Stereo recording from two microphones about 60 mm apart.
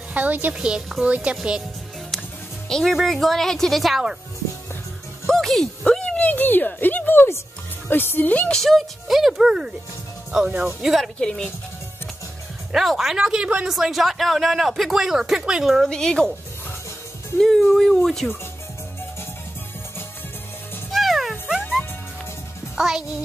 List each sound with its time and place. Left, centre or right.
0.1 s speech: right
0.6 s speech: centre
2.7 s speech: centre
5.2 s music: centre
5.9 s a sound: centre
6.2 s a woman's voice: left
8.5 s speech: centre
11.1 s a woman's voice: centre
12.7 s speech: centre
15.9 s a woman's voice: centre
17.4 s speech: centre
20.9 s music: centre
22.8 s a child's voice: centre